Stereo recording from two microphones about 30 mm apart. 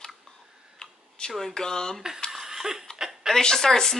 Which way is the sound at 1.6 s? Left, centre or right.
Left.